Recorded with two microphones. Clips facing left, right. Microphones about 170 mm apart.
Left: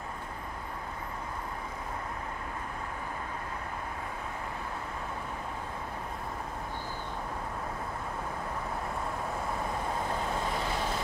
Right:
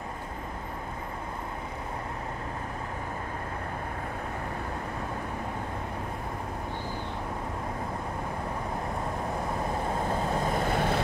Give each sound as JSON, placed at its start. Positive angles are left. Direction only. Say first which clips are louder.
{"t": 10.5, "sound": "vehicle", "louder": "right 5 dB", "side_deg": -55}